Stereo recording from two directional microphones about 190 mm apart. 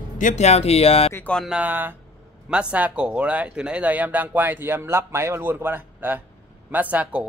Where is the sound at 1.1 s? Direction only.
5° left (ahead or behind).